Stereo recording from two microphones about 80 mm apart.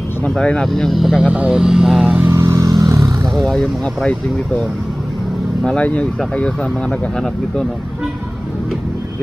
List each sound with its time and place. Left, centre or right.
0.2 s speech: centre
2.3 s vehicle: right
3.3 s speech: centre
5.8 s speech: centre